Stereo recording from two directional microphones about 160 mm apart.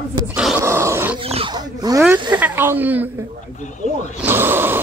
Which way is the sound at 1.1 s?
35° right (ahead or behind).